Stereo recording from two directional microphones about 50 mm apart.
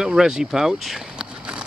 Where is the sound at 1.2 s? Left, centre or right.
Right.